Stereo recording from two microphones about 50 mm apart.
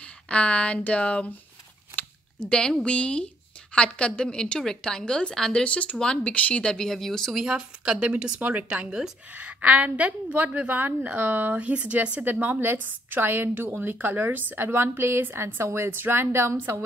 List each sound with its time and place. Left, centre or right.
0.0 s speech: left
2.4 s a woman's voice: centre
5.6 s a woman's voice: left
6.3 s speech: left
6.6 s a woman's voice: centre
6.9 s speech: centre
7.3 s a woman's voice: centre; by 14.7 s right
14.7 s a woman's voice: right
15.9 s speech: right